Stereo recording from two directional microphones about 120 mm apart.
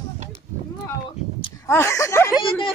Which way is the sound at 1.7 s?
25° left (ahead or behind).